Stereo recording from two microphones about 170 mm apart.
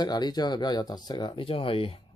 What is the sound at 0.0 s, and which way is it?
A man's voice, 25° left (ahead or behind).